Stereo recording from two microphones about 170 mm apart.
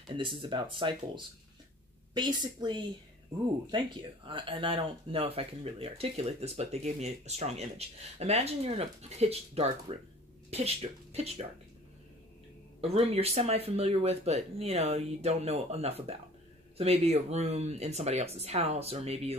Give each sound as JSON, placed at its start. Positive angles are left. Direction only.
{"t": 0.4, "sound": "speech", "side_deg": -30}
{"t": 12.8, "sound": "speech", "side_deg": -35}